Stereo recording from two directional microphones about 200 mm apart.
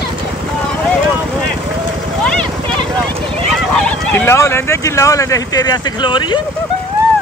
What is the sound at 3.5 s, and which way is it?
Speech, 5° left (ahead or behind).